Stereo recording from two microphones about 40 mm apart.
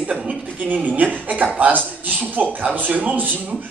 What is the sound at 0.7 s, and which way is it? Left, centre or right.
A man's voice, right.